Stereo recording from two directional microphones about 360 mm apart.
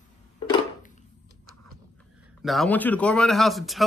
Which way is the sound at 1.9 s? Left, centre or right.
Centre.